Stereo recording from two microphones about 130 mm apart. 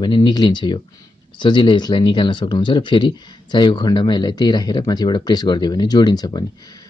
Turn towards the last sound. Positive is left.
turn(degrees=30)  # may be behind; listen again after turning